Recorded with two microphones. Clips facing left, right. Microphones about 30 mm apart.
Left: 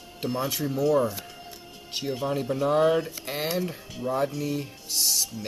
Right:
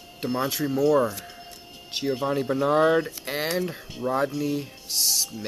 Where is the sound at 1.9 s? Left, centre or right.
Right.